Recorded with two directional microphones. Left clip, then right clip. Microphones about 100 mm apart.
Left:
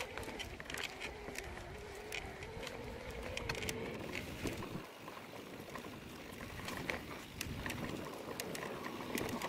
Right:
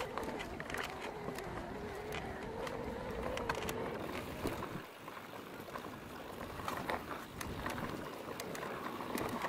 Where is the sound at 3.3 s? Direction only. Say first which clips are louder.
Right 1 dB; 20° left (ahead or behind).